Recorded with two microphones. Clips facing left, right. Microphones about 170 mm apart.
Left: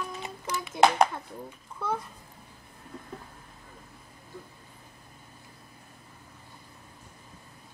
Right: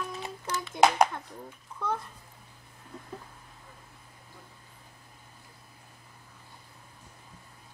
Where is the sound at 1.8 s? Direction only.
5° left (ahead or behind).